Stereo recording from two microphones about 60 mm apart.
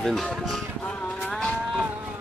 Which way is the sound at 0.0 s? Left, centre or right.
Centre.